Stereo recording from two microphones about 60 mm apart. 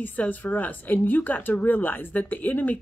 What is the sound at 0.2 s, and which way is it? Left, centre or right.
Speech, left.